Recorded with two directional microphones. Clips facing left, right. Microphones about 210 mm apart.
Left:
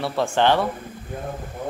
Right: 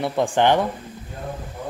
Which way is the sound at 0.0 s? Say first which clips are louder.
Right 1 dB; 15° right (ahead or behind).